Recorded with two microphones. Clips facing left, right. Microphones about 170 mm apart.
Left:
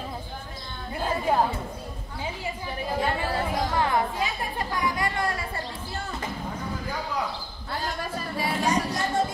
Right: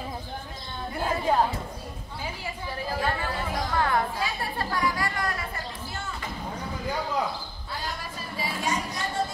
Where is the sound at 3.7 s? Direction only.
15° left (ahead or behind).